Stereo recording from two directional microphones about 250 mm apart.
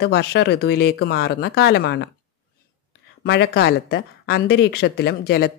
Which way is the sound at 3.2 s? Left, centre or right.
Left.